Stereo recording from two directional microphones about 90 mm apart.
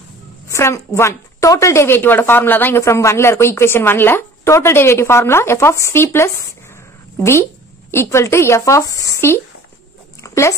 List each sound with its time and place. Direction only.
0.5 s a woman's voice: 30° left (ahead or behind)
2.8 s a woman's voice: 35° left (ahead or behind)
10.2 s dog: 35° left (ahead or behind)